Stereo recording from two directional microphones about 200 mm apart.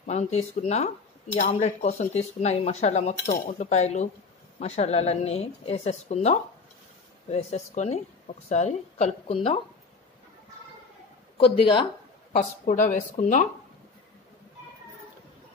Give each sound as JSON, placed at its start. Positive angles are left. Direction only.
{"t": 0.0, "sound": "speech", "side_deg": 35}
{"t": 11.3, "sound": "speech", "side_deg": 25}
{"t": 12.3, "sound": "speech", "side_deg": 40}